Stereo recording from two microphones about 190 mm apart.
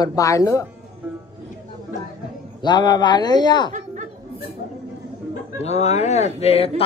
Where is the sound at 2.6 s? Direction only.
25° left (ahead or behind).